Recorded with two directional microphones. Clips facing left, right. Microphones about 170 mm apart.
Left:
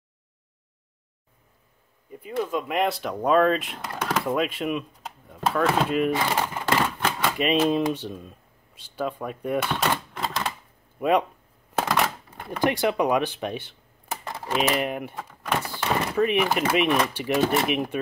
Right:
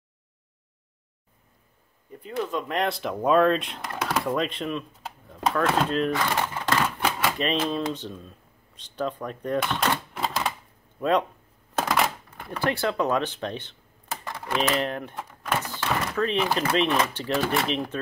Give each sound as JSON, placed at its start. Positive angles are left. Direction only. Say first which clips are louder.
{"t": 2.2, "sound": "speech", "louder": "left 2 dB", "side_deg": 5}
{"t": 5.0, "sound": "a sound", "louder": "even", "side_deg": 5}
{"t": 6.1, "sound": "speech", "louder": "left 1 dB", "side_deg": 15}
{"t": 7.0, "sound": "typewriter", "louder": "even", "side_deg": -5}
{"t": 7.3, "sound": "speech", "louder": "left 4 dB", "side_deg": 10}
{"t": 12.4, "sound": "speech", "louder": "left 3 dB", "side_deg": 15}